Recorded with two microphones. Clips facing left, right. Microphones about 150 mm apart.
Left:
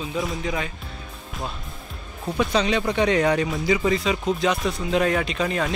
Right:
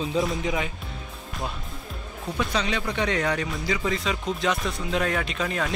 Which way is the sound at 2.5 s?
25° left (ahead or behind).